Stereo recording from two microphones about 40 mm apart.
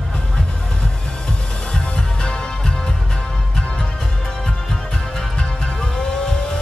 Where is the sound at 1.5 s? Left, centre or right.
Left.